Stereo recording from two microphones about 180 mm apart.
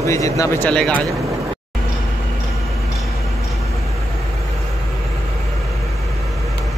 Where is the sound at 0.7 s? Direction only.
5° left (ahead or behind).